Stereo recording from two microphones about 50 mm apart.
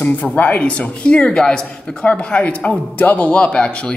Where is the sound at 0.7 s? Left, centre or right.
Left.